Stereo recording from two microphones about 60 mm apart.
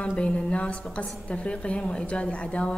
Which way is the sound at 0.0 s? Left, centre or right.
Left.